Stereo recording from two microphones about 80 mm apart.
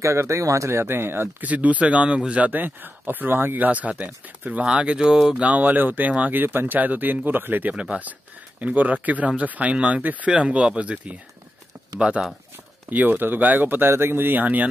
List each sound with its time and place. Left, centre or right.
0.0 s speech: right; by 5.4 s centre
5.4 s speech: centre
7.7 s speech: centre
12.9 s speech: right